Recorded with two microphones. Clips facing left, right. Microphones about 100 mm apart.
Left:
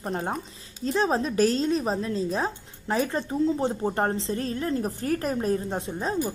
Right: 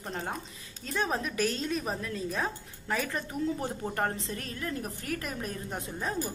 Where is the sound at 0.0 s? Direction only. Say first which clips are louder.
Left 6 dB; 40° left (ahead or behind).